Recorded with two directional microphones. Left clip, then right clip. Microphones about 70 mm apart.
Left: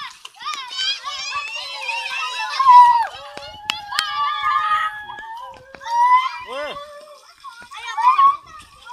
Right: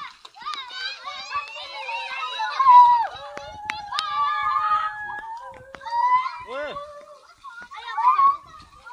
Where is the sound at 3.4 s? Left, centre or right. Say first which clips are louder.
Left 6 dB; left.